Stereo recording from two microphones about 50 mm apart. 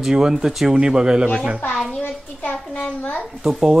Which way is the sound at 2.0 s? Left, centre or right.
Left.